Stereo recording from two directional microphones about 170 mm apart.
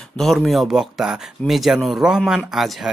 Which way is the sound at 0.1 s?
Centre (ahead or behind).